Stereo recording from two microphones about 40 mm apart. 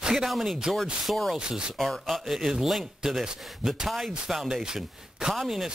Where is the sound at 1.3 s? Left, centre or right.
Right.